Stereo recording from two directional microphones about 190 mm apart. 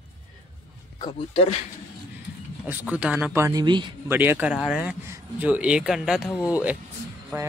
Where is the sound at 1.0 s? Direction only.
30° left (ahead or behind).